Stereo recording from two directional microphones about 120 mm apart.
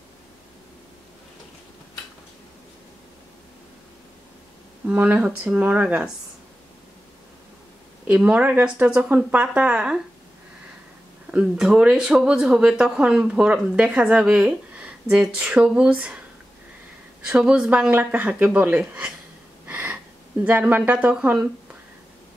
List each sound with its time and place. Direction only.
4.8 s speech: 15° right (ahead or behind)
8.1 s speech: 10° right (ahead or behind)
11.3 s speech: 5° right (ahead or behind)
17.3 s speech: 10° right (ahead or behind)
19.6 s a sound: 15° right (ahead or behind)
20.4 s speech: 15° right (ahead or behind)